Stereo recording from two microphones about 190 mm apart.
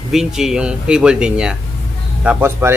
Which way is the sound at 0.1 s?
Centre (ahead or behind).